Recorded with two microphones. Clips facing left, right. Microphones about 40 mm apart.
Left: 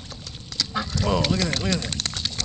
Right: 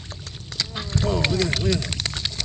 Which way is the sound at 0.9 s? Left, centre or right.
Right.